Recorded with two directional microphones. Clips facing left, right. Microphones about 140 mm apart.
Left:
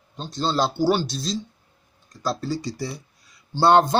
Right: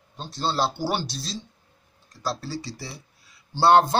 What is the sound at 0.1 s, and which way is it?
Speech, 10° right (ahead or behind).